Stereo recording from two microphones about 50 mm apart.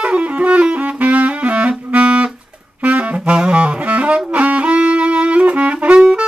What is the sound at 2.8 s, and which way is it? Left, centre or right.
Saxophone, right.